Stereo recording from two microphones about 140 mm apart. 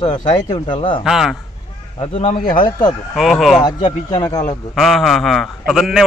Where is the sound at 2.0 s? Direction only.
45° left (ahead or behind).